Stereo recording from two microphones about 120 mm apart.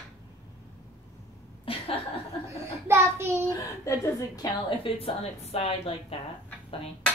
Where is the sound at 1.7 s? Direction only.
50° left (ahead or behind).